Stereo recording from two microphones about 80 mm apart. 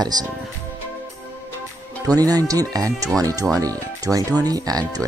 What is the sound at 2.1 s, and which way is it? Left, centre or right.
Speech, right.